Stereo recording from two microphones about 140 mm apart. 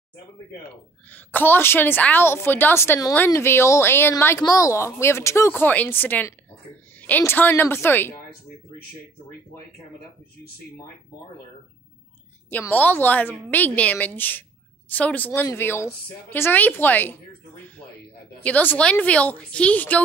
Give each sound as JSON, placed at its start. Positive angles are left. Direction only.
{"t": 1.1, "sound": "a woman's voice", "side_deg": 15}
{"t": 12.4, "sound": "a woman's voice", "side_deg": 10}
{"t": 18.4, "sound": "a woman's voice", "side_deg": 10}